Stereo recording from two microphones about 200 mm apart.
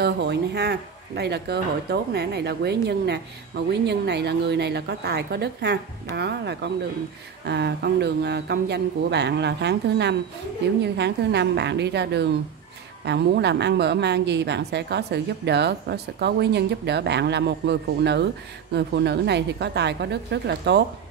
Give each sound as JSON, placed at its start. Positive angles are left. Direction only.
{"t": 0.0, "sound": "speech", "side_deg": -55}